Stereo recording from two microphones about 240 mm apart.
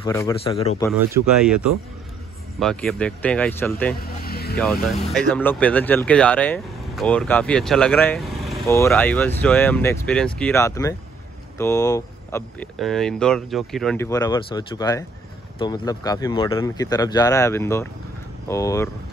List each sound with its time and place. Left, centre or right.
0.0 s speech: centre
0.4 s speech: left
1.1 s speech: centre
4.2 s vehicle: left
4.8 s speech: centre
8.6 s speech: centre